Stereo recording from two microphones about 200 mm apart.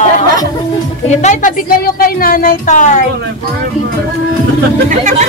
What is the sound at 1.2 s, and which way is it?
Speech, 40° left (ahead or behind).